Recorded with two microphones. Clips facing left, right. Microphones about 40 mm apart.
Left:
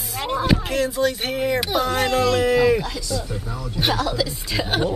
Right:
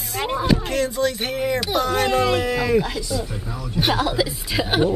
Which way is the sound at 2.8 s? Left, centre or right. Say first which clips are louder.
Right 2 dB; centre.